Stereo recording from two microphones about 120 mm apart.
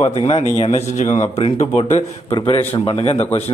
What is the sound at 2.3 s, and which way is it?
A man's voice, 50° left (ahead or behind).